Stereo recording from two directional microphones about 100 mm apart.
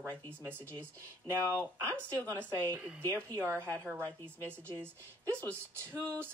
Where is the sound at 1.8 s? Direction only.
30° right (ahead or behind).